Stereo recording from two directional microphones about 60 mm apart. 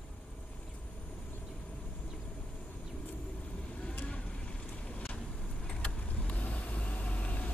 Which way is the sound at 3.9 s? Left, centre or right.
Left.